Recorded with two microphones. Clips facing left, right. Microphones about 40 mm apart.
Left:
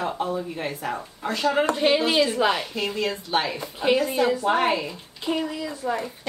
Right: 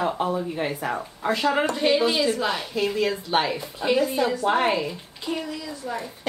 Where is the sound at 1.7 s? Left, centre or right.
Centre.